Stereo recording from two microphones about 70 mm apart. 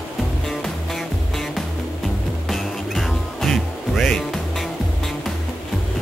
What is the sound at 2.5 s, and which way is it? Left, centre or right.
Music, centre.